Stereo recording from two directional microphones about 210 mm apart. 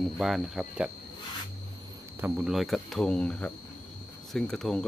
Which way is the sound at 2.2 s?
5° right (ahead or behind).